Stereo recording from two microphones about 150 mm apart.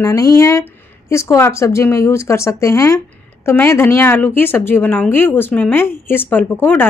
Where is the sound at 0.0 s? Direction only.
20° left (ahead or behind).